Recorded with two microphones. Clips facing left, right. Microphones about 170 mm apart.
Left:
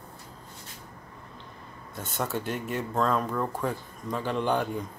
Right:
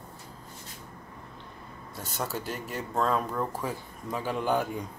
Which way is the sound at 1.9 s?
Centre (ahead or behind).